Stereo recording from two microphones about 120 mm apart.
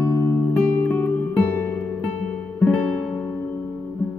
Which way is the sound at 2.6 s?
5° left (ahead or behind).